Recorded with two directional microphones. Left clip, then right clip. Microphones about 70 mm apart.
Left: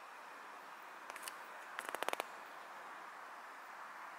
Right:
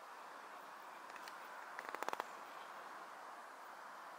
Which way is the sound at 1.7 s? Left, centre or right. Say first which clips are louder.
Left 3 dB; right.